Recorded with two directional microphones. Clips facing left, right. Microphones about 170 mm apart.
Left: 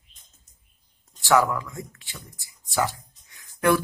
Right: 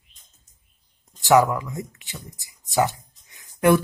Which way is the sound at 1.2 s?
20° right (ahead or behind).